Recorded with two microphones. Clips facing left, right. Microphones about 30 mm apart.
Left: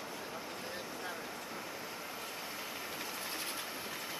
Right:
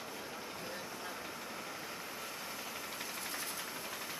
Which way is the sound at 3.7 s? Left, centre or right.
Centre.